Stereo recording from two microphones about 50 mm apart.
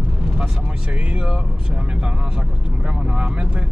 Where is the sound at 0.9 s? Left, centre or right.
Right.